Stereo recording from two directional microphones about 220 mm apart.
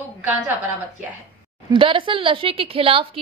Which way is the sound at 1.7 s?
25° right (ahead or behind).